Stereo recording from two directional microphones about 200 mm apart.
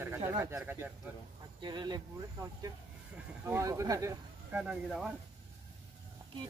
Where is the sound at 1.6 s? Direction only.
20° right (ahead or behind).